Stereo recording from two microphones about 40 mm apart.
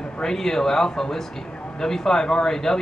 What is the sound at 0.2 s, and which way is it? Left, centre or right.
Speech, centre.